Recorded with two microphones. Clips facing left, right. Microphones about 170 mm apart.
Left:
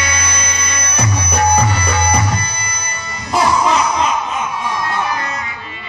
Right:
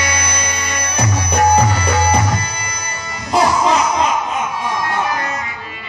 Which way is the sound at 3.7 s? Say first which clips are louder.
Even; 45° right (ahead or behind).